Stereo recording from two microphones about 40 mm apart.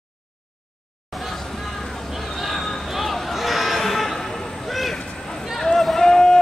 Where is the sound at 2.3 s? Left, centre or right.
Centre.